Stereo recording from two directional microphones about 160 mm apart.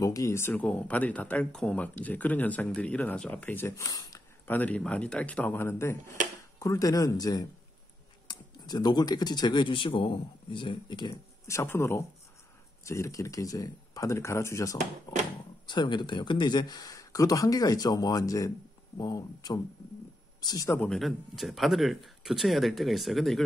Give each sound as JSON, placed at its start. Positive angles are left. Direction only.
{"t": 0.0, "sound": "speech", "side_deg": 20}
{"t": 4.5, "sound": "speech", "side_deg": 10}
{"t": 20.9, "sound": "speech", "side_deg": 0}